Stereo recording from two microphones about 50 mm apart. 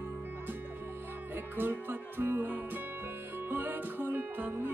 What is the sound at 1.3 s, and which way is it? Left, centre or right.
Music, right.